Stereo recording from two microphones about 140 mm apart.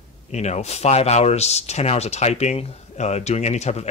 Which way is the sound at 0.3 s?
55° left (ahead or behind).